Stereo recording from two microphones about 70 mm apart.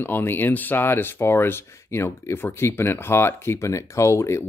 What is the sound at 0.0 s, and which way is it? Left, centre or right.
Speech, left.